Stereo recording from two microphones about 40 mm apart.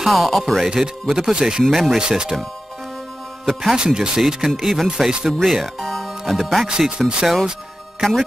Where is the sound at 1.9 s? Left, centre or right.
Centre.